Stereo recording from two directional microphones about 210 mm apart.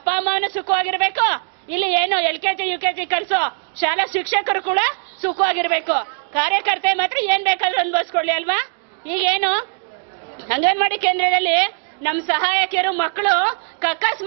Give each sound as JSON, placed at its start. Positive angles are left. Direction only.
{"t": 0.1, "sound": "a woman's voice", "side_deg": -15}